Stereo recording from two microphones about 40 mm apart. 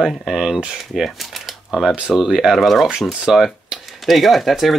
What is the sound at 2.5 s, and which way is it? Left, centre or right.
Speech, centre.